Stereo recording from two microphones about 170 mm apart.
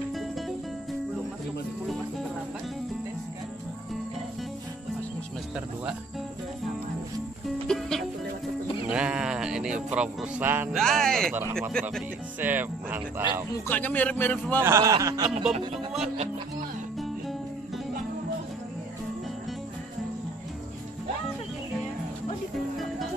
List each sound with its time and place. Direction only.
7.6 s music: 5° left (ahead or behind)
10.7 s speech: centre (ahead or behind)
12.4 s speech: 10° right (ahead or behind)
13.2 s speech: 25° left (ahead or behind)
13.7 s a man's voice: 10° left (ahead or behind)
14.6 s speech: 15° right (ahead or behind)